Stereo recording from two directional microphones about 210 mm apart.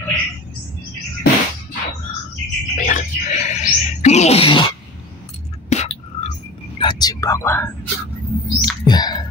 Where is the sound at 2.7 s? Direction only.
35° left (ahead or behind).